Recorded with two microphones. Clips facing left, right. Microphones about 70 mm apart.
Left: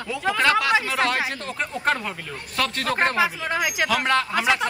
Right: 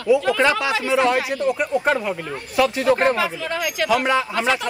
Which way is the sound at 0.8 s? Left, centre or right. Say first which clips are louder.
Right 5 dB; centre.